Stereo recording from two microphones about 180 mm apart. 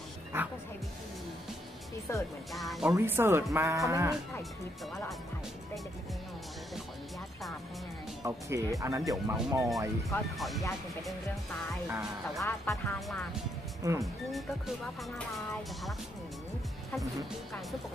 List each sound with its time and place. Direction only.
0.3 s music: 15° right (ahead or behind)
2.1 s speech: 15° left (ahead or behind)
2.5 s speech: centre (ahead or behind)
3.0 s speech: 15° right (ahead or behind)
8.2 s speech: 15° right (ahead or behind)
10.1 s speech: 15° left (ahead or behind)
11.9 s speech: 5° right (ahead or behind)
12.4 s speech: 10° left (ahead or behind)
13.8 s speech: 15° right (ahead or behind)
15.1 s speech: 5° left (ahead or behind)